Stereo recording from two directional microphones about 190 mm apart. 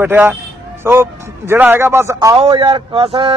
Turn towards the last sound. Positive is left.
turn(degrees=-30)  # may be behind; listen again after turning